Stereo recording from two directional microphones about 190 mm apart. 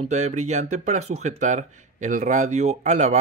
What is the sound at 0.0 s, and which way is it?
Speech, 35° right (ahead or behind).